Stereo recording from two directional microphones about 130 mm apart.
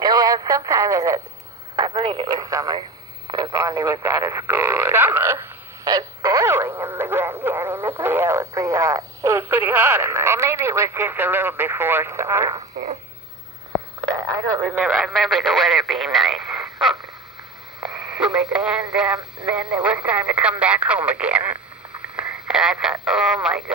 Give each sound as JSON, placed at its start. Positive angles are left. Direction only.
{"t": 0.0, "sound": "radio", "side_deg": -30}
{"t": 1.8, "sound": "speech", "side_deg": -40}
{"t": 2.2, "sound": "speech", "side_deg": -30}
{"t": 5.9, "sound": "speech", "side_deg": -25}
{"t": 14.6, "sound": "speech", "side_deg": -10}
{"t": 17.7, "sound": "speech", "side_deg": -5}